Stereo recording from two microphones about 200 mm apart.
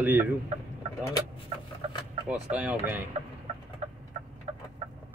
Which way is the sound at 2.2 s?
5° right (ahead or behind).